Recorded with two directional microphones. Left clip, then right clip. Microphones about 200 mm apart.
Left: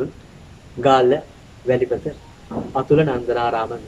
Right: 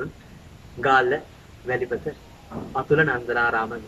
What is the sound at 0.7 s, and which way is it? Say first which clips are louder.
Speech: left 5 dB; 20° left (ahead or behind).